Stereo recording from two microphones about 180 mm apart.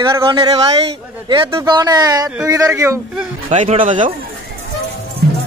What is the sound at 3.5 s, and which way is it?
Speech, 40° right (ahead or behind).